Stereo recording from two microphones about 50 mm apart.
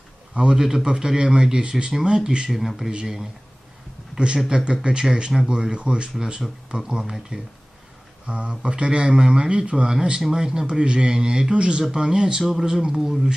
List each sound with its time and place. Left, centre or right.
0.3 s a man's voice: centre
2.9 s speech: centre
4.1 s a sound: centre
4.5 s speech: centre
8.3 s a man's voice: right; by 13.3 s centre